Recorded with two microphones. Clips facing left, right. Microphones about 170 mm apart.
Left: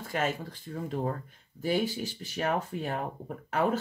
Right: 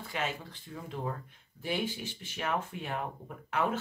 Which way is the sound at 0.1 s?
45° left (ahead or behind).